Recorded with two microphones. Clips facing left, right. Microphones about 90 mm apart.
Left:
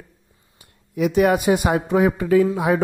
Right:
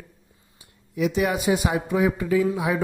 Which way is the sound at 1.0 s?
55° left (ahead or behind).